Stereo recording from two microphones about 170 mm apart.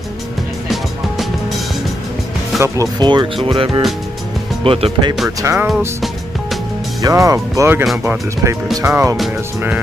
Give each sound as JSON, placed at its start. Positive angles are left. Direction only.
{"t": 2.6, "sound": "speech", "side_deg": -25}
{"t": 5.4, "sound": "speech", "side_deg": -15}
{"t": 7.0, "sound": "speech", "side_deg": -20}